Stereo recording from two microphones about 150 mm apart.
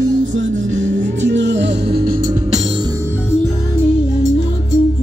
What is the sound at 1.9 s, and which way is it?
Music, 90° right.